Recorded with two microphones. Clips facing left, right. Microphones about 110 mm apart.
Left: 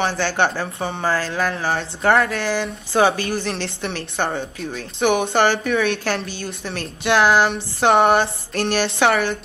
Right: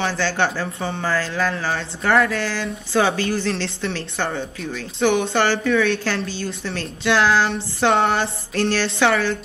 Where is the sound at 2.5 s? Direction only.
20° left (ahead or behind).